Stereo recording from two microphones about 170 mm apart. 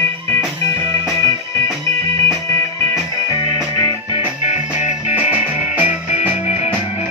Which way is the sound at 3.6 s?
20° left (ahead or behind).